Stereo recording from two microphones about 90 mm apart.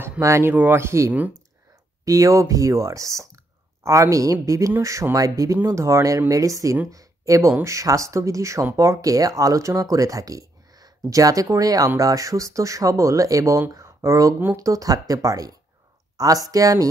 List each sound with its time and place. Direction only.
0.2 s speech: 30° right (ahead or behind)